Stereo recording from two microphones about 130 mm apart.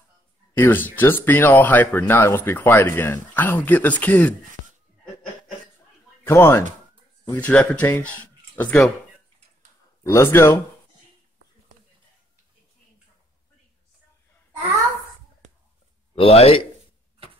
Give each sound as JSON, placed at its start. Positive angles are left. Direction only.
{"t": 0.6, "sound": "speech", "side_deg": 15}
{"t": 6.2, "sound": "speech", "side_deg": 20}
{"t": 10.0, "sound": "speech", "side_deg": 20}
{"t": 16.2, "sound": "speech", "side_deg": 50}